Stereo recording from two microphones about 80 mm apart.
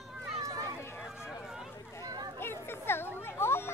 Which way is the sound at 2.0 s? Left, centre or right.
Right.